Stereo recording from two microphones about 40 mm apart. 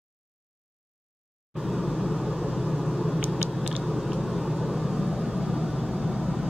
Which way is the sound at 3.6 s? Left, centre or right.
Centre.